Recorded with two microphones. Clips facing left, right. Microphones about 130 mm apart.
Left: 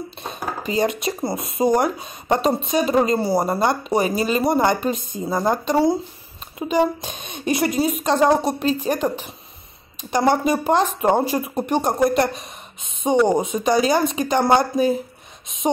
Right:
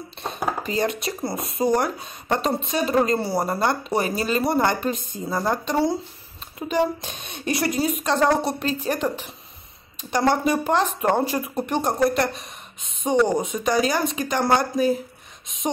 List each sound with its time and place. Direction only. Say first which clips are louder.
0.7 s speech: left 7 dB; 15° left (ahead or behind)
10.1 s speech: left 2 dB; 15° left (ahead or behind)
13.3 s speech: left 4 dB; 25° left (ahead or behind)